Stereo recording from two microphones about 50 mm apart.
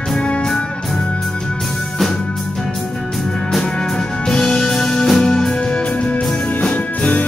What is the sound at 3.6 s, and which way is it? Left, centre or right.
Music, centre.